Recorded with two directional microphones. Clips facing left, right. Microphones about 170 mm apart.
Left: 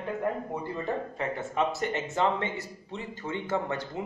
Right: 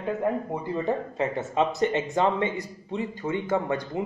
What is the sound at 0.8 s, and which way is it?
A man's voice, 20° right (ahead or behind).